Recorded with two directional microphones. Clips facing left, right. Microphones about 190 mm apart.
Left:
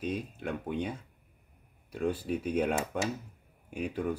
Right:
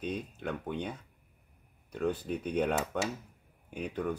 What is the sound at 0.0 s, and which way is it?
Speech, 5° left (ahead or behind).